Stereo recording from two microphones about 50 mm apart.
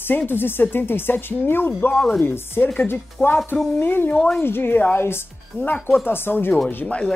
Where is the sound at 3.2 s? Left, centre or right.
Left.